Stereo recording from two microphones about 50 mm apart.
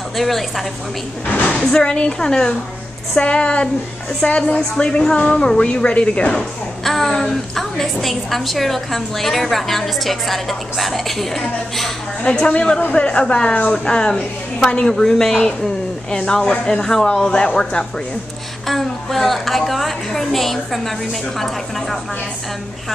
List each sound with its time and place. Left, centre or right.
0.2 s a woman's voice: centre
1.2 s speech: left
1.6 s a woman's voice: centre
6.8 s a woman's voice: centre
12.3 s a woman's voice: centre
18.7 s a woman's voice: centre